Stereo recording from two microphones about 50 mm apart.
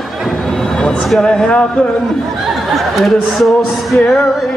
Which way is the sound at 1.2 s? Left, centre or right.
Centre.